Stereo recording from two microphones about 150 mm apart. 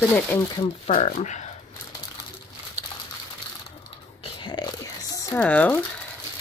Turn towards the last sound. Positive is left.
turn(degrees=10)  # may be behind; listen again after turning